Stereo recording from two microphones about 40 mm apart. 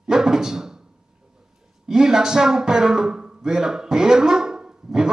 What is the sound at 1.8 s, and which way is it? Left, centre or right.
Speech, centre.